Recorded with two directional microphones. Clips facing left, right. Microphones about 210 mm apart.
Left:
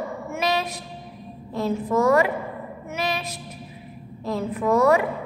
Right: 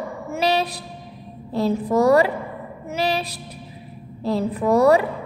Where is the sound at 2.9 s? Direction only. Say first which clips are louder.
Right 5 dB; 35° right (ahead or behind).